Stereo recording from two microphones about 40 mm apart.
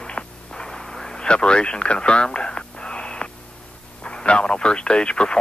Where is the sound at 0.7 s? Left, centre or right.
Centre.